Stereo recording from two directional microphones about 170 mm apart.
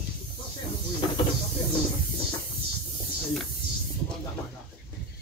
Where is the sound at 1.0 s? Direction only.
30° left (ahead or behind).